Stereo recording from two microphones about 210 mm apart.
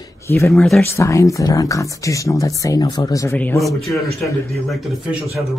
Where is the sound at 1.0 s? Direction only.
15° left (ahead or behind).